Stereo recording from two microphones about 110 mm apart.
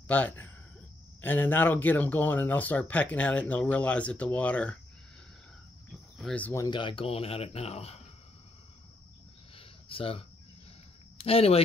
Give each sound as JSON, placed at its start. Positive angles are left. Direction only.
{"t": 0.1, "sound": "speech", "side_deg": 15}
{"t": 6.2, "sound": "speech", "side_deg": 15}
{"t": 6.7, "sound": "speech", "side_deg": 50}
{"t": 9.6, "sound": "a sound", "side_deg": 55}
{"t": 11.2, "sound": "speech", "side_deg": 60}